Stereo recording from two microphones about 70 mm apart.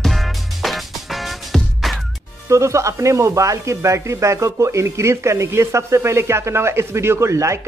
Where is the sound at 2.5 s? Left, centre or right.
Right.